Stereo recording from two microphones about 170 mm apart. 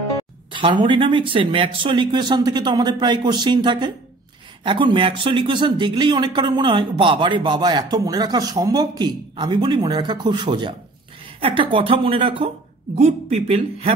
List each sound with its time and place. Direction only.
0.5 s speech: 30° right (ahead or behind)